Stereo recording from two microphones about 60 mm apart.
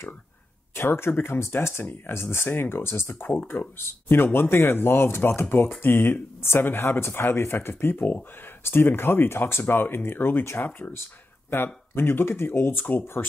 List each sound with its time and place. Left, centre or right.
0.7 s speech: left
3.3 s speech: left
7.9 s speech: left
8.6 s speech: left